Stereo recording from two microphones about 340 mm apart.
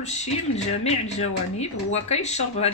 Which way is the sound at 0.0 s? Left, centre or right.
Centre.